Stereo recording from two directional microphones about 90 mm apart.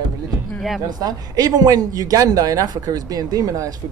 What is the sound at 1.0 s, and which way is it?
Speech, 45° right (ahead or behind).